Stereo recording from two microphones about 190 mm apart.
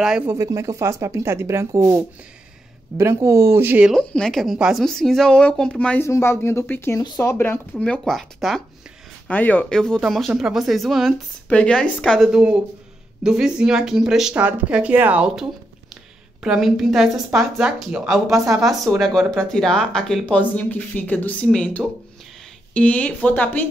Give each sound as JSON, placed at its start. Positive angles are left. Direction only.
{"t": 0.0, "sound": "speech", "side_deg": -5}
{"t": 0.4, "sound": "speech", "side_deg": -15}
{"t": 3.9, "sound": "speech", "side_deg": 5}